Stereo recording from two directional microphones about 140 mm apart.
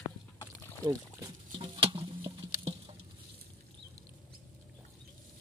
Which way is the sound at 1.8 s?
40° right (ahead or behind).